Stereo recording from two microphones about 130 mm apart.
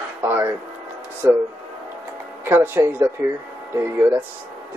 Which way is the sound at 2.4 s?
15° right (ahead or behind).